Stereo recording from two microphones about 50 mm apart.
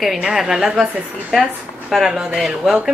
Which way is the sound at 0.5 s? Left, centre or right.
Centre.